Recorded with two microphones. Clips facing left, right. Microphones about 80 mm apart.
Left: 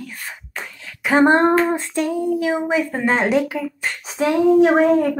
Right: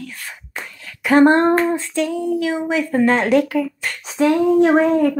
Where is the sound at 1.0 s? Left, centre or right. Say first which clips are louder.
Right 3 dB; centre.